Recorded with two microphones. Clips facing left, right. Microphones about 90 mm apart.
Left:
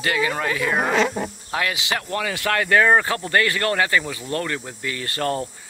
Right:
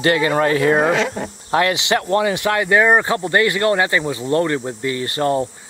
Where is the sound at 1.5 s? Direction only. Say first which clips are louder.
Right 9 dB; 30° right (ahead or behind).